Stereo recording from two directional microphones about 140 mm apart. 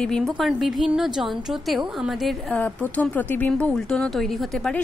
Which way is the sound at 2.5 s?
10° left (ahead or behind).